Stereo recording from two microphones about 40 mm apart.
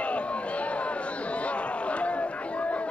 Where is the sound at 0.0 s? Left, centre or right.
Left.